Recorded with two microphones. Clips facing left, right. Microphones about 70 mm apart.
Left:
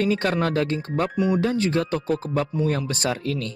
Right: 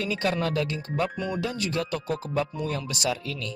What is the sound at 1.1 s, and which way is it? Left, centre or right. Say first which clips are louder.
Speech: left 8 dB; centre.